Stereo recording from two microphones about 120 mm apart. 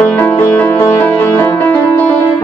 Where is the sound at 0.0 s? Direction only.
15° left (ahead or behind).